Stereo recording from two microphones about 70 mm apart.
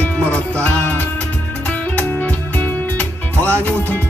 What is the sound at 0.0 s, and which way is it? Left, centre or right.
Music, left.